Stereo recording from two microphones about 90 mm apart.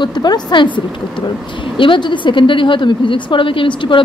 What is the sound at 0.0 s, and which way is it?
A woman's voice, 50° left (ahead or behind).